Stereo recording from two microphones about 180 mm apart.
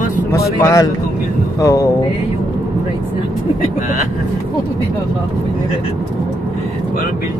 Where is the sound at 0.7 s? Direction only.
20° left (ahead or behind).